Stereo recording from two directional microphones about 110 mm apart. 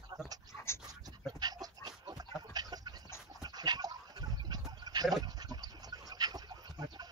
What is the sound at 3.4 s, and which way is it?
Dog, 40° right (ahead or behind).